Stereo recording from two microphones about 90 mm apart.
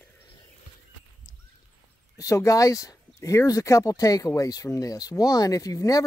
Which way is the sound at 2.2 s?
35° left (ahead or behind).